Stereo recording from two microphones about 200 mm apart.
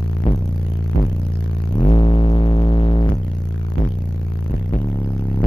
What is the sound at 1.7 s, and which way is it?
Music, 25° left (ahead or behind).